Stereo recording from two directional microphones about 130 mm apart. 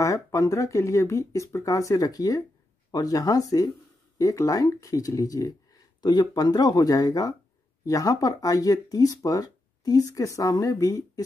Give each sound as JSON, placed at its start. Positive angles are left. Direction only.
{"t": 0.0, "sound": "speech", "side_deg": 25}